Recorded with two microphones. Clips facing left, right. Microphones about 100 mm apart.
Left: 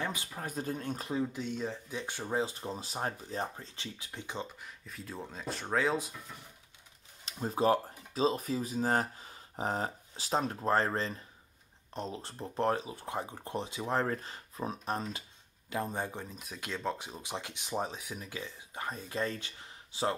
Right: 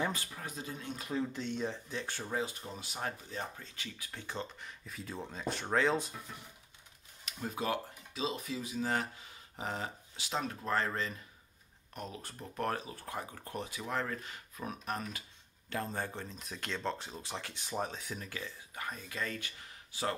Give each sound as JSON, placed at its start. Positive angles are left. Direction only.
{"t": 0.4, "sound": "speech", "side_deg": 45}
{"t": 1.1, "sound": "speech", "side_deg": 10}
{"t": 2.0, "sound": "speech", "side_deg": 20}
{"t": 4.1, "sound": "speech", "side_deg": 15}
{"t": 4.6, "sound": "speech", "side_deg": 0}
{"t": 7.2, "sound": "speech", "side_deg": 30}
{"t": 15.7, "sound": "speech", "side_deg": 15}
{"t": 18.8, "sound": "speech", "side_deg": 30}